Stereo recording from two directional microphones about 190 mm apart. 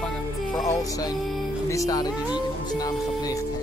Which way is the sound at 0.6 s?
20° left (ahead or behind).